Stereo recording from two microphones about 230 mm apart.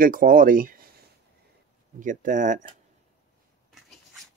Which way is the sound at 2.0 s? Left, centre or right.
Right.